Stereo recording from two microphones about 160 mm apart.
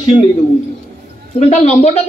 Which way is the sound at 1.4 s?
45° left (ahead or behind).